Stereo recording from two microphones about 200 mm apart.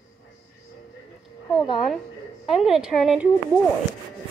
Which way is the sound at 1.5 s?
Centre (ahead or behind).